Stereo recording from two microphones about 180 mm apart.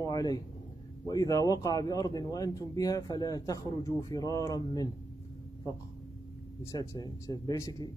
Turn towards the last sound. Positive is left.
turn(degrees=20)  # may be behind; listen again after turning